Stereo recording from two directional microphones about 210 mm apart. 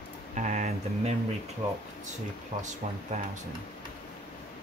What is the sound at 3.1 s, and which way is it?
Speech, 35° right (ahead or behind).